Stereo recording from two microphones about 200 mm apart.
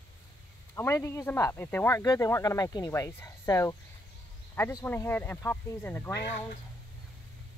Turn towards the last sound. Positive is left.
turn(degrees=55)  # may be behind; listen again after turning